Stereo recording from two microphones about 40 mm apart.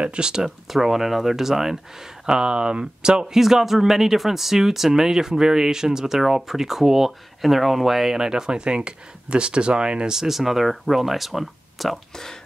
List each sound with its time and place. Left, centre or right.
0.0 s speech: right
0.7 s speech: centre
3.3 s speech: centre; by 10.1 s right
10.1 s speech: centre